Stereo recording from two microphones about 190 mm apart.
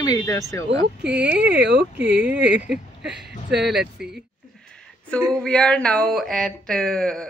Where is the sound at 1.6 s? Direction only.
60° right (ahead or behind).